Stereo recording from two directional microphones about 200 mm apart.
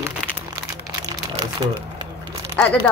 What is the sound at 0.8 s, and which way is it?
Crumpling, 20° right (ahead or behind).